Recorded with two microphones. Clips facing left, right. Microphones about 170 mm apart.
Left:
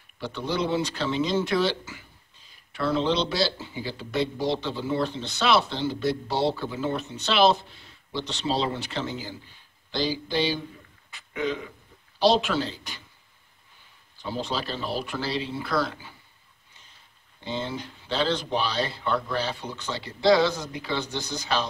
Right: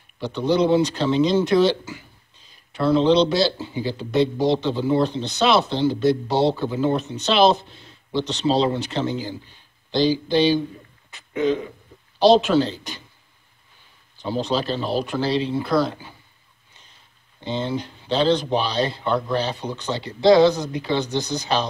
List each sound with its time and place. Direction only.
0.2 s a man's voice: 20° right (ahead or behind)
14.2 s speech: 20° right (ahead or behind)
17.4 s speech: 20° right (ahead or behind)